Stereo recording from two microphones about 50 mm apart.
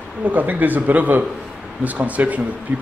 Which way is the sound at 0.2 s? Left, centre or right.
Right.